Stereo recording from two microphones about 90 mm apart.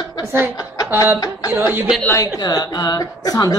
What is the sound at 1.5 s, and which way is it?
Speech, 25° right (ahead or behind).